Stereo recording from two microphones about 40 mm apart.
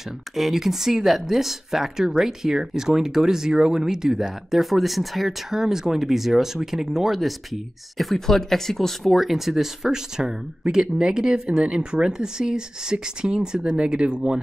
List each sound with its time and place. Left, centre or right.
0.4 s speech: centre; by 14.4 s right